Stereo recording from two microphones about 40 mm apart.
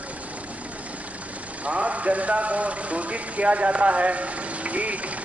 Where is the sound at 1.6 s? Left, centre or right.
Right.